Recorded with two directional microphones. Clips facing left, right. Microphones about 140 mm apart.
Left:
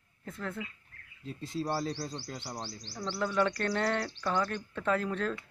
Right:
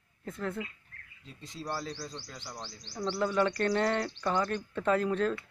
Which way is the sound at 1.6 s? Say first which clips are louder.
Left 2 dB; 35° left (ahead or behind).